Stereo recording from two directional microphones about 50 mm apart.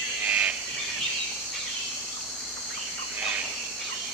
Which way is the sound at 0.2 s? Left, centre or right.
Right.